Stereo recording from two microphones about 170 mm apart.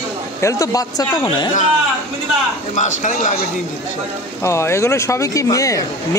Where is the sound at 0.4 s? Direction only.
20° left (ahead or behind).